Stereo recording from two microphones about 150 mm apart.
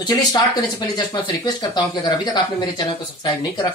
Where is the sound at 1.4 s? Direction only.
30° left (ahead or behind).